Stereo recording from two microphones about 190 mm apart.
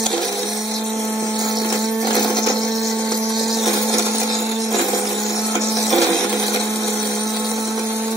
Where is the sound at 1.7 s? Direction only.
15° right (ahead or behind).